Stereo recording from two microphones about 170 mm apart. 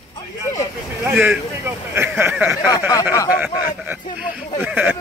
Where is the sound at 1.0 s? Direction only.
10° right (ahead or behind).